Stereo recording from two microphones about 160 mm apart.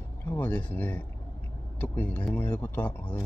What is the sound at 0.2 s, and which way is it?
Speech, 10° left (ahead or behind).